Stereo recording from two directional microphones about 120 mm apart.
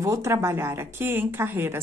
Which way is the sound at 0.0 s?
25° right (ahead or behind).